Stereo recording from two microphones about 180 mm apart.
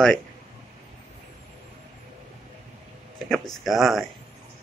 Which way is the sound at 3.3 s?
Centre (ahead or behind).